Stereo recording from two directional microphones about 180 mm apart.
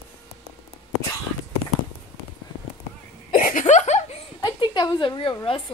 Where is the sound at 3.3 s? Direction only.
50° left (ahead or behind).